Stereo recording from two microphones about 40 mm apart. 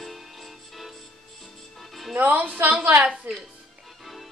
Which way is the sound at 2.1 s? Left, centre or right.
Right.